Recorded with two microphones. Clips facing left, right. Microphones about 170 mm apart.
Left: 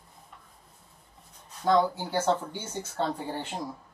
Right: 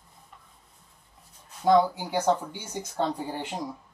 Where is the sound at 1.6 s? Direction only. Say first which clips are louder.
Right 3 dB; 15° right (ahead or behind).